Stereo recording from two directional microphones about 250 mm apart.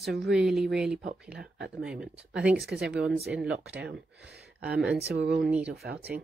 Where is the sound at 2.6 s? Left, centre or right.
Right.